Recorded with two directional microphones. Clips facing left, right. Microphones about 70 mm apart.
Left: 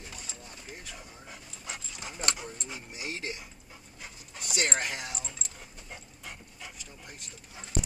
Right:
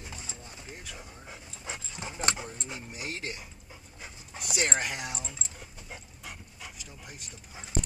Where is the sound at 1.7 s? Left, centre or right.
Right.